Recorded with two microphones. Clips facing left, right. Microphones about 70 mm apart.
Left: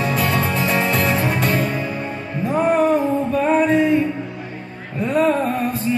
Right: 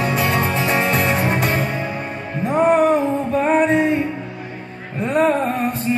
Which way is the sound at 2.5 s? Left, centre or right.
Right.